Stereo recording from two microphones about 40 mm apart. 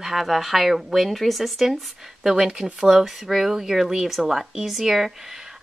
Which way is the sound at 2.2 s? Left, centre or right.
Centre.